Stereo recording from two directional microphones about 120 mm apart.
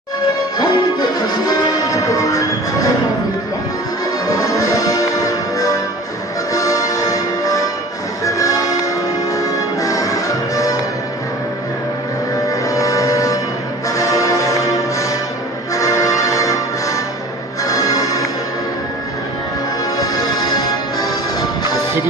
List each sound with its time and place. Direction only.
0.6 s music: 35° left (ahead or behind)
4.3 s music: 30° left (ahead or behind)
12.4 s music: 25° left (ahead or behind)
20.0 s music: 30° left (ahead or behind)